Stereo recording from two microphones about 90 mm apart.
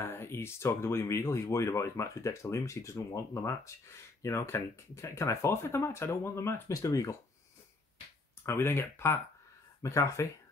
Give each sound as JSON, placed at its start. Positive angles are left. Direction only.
{"t": 0.0, "sound": "speech", "side_deg": 25}
{"t": 8.5, "sound": "speech", "side_deg": 25}